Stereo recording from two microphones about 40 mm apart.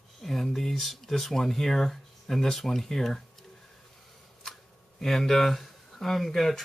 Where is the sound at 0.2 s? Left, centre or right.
Centre.